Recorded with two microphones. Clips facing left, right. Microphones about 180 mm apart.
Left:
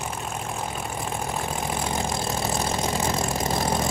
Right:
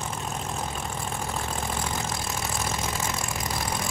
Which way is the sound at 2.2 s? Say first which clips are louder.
Left 5 dB; 35° left (ahead or behind).